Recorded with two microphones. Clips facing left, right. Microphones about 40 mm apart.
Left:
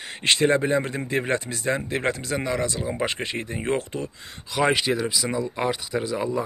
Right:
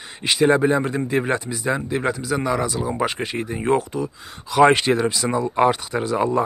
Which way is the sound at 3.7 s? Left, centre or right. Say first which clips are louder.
Right 6 dB; left.